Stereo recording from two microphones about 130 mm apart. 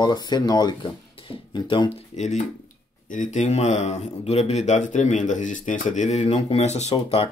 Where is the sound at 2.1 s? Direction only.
60° left (ahead or behind).